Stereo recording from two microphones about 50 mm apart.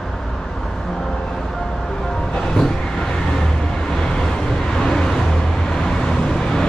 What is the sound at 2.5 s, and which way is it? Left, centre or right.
Vehicle, centre.